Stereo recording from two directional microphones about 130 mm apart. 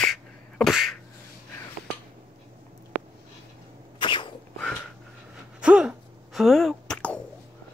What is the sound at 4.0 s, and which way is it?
Sneeze, 40° left (ahead or behind).